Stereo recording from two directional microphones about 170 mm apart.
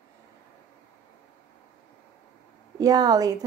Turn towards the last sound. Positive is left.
turn(degrees=-20)  # may be behind; listen again after turning